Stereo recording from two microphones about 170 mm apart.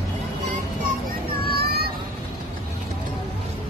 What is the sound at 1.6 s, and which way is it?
Vehicle, 70° right (ahead or behind).